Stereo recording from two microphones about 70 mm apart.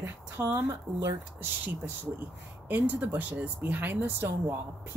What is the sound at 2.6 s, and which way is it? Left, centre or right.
Speech, right.